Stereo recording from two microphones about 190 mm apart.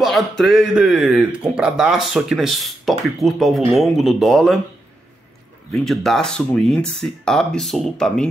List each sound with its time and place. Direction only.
0.0 s a man's voice: centre (ahead or behind)
5.7 s a man's voice: centre (ahead or behind)